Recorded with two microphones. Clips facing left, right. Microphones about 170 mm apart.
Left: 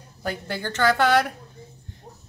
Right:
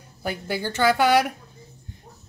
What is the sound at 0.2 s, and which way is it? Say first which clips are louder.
Speech: right 2 dB; 10° right (ahead or behind).